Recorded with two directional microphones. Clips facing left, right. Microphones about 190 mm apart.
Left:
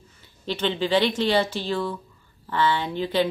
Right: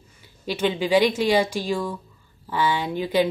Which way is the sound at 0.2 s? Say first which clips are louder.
Right 3 dB; 10° right (ahead or behind).